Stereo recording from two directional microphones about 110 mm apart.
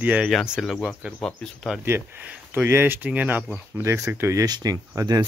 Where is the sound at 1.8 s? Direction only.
20° right (ahead or behind).